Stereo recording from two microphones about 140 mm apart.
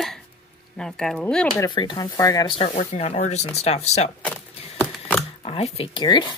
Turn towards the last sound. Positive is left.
turn(degrees=35)  # may be behind; listen again after turning